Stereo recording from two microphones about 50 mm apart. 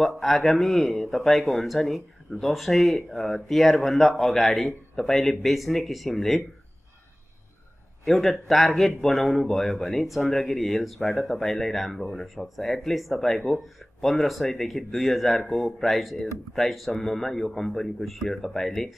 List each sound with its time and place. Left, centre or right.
0.0 s a man's voice: centre
8.0 s a man's voice: centre